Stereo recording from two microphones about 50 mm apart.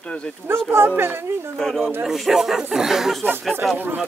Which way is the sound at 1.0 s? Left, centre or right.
Right.